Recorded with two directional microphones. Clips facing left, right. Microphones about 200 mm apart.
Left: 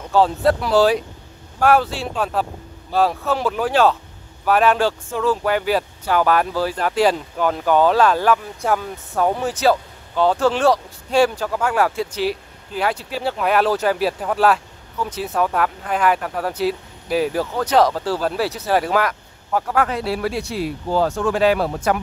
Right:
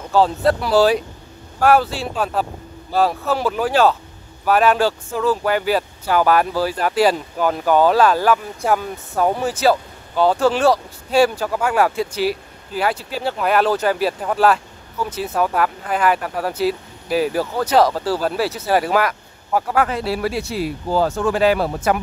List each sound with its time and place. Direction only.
0.1 s speech: centre (ahead or behind)